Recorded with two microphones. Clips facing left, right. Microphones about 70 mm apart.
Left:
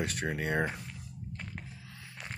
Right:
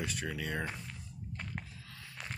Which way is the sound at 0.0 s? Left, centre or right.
Left.